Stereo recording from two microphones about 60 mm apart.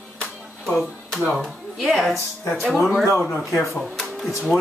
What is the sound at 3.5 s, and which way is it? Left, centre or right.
Speech, centre.